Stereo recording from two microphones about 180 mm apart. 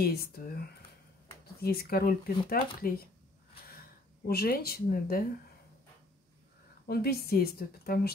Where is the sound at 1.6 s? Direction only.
55° left (ahead or behind).